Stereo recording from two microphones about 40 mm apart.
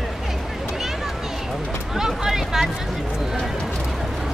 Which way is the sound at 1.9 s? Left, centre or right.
Centre.